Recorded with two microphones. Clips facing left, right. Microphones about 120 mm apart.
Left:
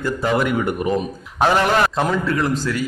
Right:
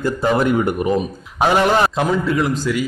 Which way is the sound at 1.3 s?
10° right (ahead or behind).